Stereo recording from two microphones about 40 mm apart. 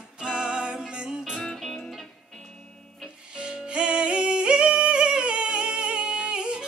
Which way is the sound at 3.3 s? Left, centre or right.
Right.